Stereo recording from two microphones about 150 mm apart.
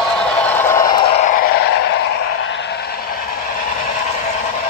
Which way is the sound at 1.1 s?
60° left (ahead or behind).